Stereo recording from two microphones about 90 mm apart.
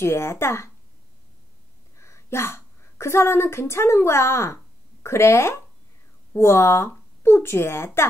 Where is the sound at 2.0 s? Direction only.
30° left (ahead or behind).